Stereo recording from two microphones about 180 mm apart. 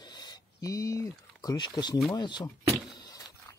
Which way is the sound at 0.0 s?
25° left (ahead or behind).